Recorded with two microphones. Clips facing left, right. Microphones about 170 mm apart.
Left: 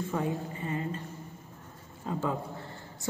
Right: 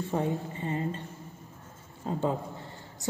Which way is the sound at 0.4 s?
30° right (ahead or behind).